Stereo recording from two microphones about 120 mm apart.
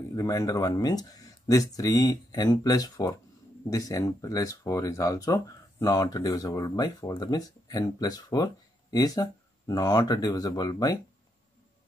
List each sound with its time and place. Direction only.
0.1 s speech: 30° left (ahead or behind)